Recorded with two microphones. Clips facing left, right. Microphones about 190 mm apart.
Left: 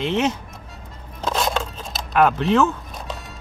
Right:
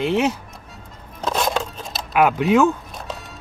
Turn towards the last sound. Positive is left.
turn(degrees=0)  # may be behind; listen again after turning